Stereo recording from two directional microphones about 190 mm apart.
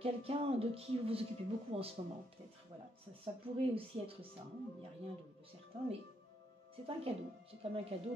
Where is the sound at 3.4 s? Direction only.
30° right (ahead or behind).